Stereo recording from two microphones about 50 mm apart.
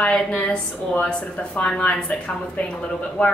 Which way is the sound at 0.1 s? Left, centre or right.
Centre.